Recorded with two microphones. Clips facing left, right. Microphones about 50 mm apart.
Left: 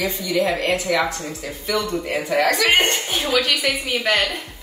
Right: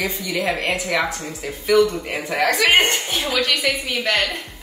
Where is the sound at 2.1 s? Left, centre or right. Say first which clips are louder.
Left 1 dB; centre.